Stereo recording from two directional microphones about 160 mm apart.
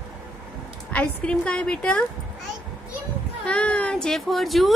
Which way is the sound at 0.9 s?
5° left (ahead or behind).